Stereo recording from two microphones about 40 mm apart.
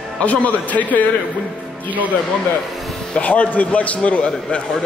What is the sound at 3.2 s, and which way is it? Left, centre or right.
A man's voice, left.